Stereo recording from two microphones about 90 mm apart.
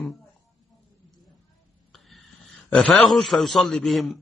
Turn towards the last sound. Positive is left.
turn(degrees=0)  # may be behind; listen again after turning